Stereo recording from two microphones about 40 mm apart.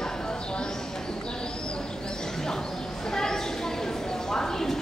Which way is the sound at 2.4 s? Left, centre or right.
Centre.